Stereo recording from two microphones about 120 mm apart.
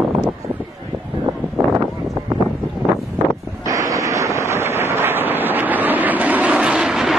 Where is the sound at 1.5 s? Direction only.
25° right (ahead or behind).